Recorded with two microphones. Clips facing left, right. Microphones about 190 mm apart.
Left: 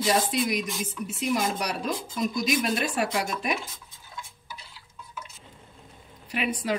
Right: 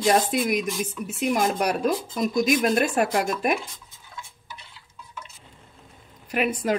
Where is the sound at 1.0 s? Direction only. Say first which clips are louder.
Right 3 dB; 50° right (ahead or behind).